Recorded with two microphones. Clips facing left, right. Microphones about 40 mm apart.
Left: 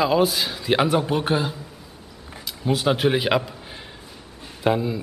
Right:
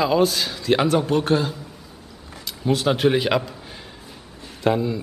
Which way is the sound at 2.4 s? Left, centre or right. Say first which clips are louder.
Right 1 dB; centre.